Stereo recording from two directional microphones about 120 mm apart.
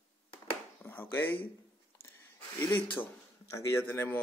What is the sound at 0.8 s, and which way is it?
Speech, 15° left (ahead or behind).